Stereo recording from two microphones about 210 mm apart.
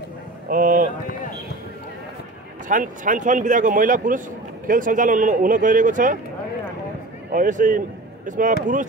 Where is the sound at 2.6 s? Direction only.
40° right (ahead or behind).